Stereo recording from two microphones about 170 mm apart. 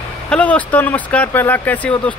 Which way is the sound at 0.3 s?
10° left (ahead or behind).